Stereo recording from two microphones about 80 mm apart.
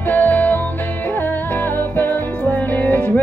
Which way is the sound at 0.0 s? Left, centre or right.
Left.